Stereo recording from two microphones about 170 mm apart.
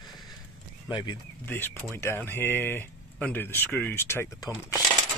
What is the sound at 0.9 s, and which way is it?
Speech, 25° left (ahead or behind).